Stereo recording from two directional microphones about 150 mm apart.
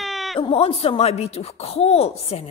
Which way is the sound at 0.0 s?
Centre (ahead or behind).